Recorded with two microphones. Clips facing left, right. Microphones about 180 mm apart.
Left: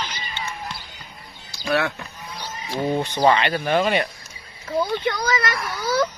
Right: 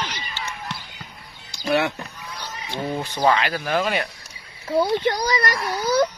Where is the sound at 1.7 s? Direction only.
10° right (ahead or behind).